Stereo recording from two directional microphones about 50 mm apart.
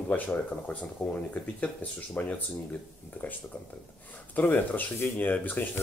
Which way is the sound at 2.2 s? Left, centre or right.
Left.